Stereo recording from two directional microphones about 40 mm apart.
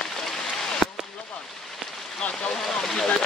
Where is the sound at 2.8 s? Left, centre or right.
Centre.